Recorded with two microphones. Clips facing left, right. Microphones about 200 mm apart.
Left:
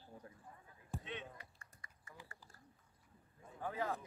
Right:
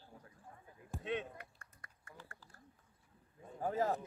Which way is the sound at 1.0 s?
50° right (ahead or behind).